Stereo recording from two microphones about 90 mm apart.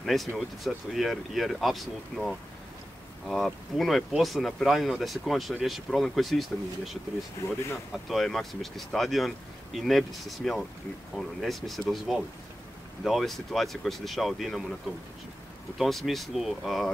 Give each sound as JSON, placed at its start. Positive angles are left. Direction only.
{"t": 0.0, "sound": "speech", "side_deg": 0}
{"t": 7.4, "sound": "speech", "side_deg": 35}
{"t": 8.1, "sound": "speech", "side_deg": 0}
{"t": 15.8, "sound": "speech", "side_deg": 0}